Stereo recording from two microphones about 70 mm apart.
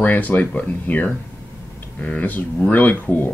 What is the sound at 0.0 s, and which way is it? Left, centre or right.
Speech, left.